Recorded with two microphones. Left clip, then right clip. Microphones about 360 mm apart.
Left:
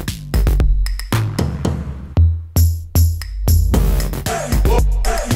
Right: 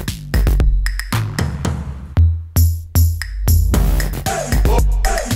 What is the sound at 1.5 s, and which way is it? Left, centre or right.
Music, right.